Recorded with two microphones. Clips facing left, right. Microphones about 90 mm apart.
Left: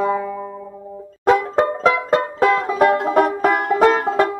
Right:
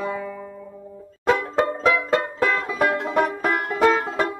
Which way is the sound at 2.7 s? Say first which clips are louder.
Left 5 dB; 50° left (ahead or behind).